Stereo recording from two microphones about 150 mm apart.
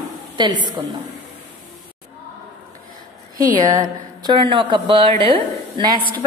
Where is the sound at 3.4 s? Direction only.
25° right (ahead or behind).